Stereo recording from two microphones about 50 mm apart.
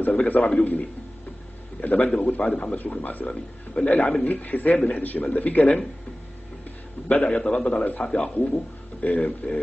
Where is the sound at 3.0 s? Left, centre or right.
Left.